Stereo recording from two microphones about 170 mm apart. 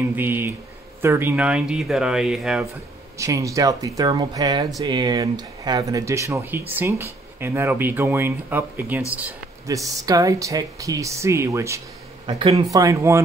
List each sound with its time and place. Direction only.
0.0 s speech: 10° right (ahead or behind)
3.2 s speech: 20° right (ahead or behind)
12.3 s speech: 35° right (ahead or behind)
12.6 s speech: 20° right (ahead or behind)